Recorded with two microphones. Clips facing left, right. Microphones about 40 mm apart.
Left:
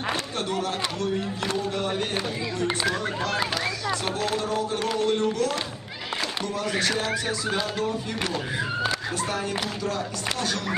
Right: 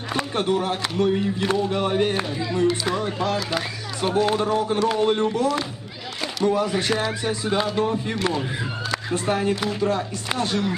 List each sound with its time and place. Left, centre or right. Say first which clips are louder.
0.1 s speech: right 9 dB; right
8.9 s speech: right 4 dB; right